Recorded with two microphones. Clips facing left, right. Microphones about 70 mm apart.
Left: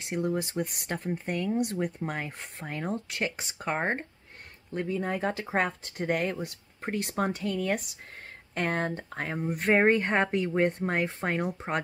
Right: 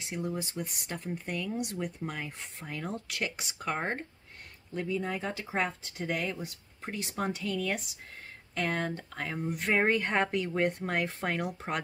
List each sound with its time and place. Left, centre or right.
0.0 s speech: left
4.7 s speech: left